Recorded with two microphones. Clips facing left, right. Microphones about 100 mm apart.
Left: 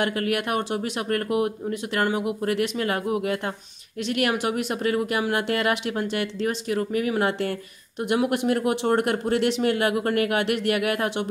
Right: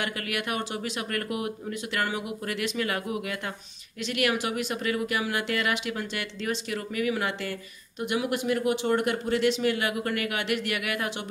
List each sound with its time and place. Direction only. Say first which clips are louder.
0.0 s speech: left 7 dB; 40° left (ahead or behind)
8.1 s speech: left 5 dB; 60° left (ahead or behind)